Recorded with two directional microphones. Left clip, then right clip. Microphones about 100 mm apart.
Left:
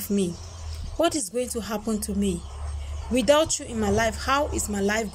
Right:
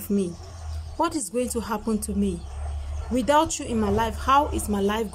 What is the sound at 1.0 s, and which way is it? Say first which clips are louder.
A woman's voice: left 1 dB; 10° right (ahead or behind).